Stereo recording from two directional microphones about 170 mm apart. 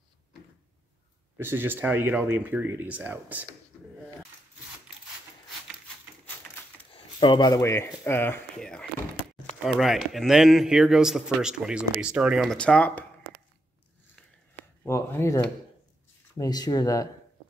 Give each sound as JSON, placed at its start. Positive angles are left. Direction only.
{"t": 1.4, "sound": "speech", "side_deg": -15}
{"t": 6.9, "sound": "a man's voice", "side_deg": 30}
{"t": 14.9, "sound": "speech", "side_deg": 15}